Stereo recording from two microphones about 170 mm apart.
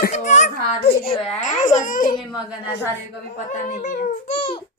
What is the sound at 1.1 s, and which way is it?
Speech, 35° left (ahead or behind).